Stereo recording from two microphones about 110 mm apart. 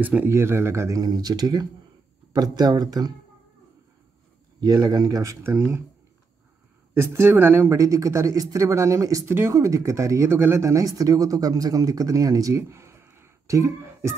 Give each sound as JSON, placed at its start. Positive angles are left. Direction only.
{"t": 0.0, "sound": "speech", "side_deg": -15}
{"t": 4.6, "sound": "speech", "side_deg": -30}
{"t": 6.9, "sound": "speech", "side_deg": -25}